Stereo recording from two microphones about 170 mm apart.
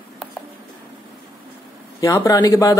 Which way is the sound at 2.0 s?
20° left (ahead or behind).